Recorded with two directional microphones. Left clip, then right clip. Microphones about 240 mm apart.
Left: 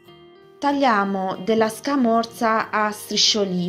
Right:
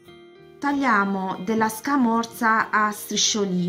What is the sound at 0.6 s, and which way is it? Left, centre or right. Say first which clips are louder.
A woman's voice: left 2 dB; centre.